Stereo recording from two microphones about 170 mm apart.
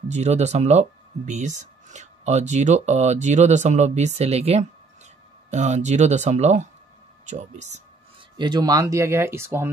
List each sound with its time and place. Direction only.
0.1 s speech: 40° right (ahead or behind)
8.4 s speech: 25° right (ahead or behind)